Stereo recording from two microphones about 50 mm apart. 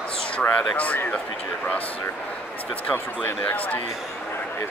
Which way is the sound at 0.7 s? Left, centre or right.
Left.